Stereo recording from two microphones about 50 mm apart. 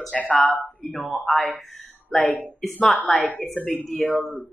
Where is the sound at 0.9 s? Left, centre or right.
Centre.